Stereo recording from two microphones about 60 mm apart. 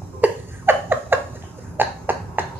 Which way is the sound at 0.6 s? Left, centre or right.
Right.